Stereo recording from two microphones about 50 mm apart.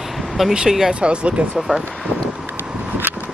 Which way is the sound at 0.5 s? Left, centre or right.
Centre.